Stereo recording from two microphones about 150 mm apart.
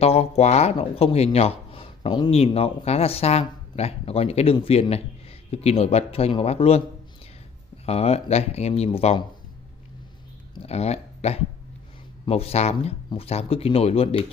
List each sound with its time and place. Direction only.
0.0 s speech: 45° left (ahead or behind)
7.8 s speech: 45° left (ahead or behind)
10.5 s speech: 45° left (ahead or behind)